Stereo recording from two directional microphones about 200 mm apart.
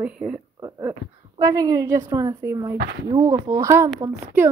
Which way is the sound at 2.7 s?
50° right (ahead or behind).